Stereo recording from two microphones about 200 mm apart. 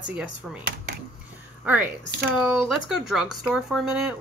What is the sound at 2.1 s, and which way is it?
Speech, 55° right (ahead or behind).